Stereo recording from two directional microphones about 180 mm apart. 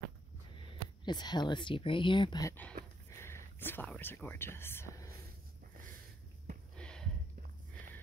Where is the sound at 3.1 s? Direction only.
15° left (ahead or behind).